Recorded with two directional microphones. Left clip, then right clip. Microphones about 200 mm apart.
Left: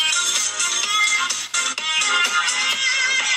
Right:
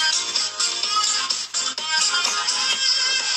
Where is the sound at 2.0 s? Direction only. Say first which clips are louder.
Left 4 dB; 45° left (ahead or behind).